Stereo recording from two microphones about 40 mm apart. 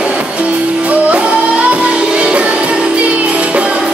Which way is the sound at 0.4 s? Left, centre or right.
Right.